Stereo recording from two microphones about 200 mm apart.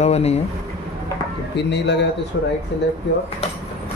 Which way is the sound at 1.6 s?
60° left (ahead or behind).